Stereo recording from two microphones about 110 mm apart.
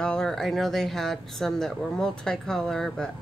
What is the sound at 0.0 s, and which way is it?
Speech, 5° left (ahead or behind).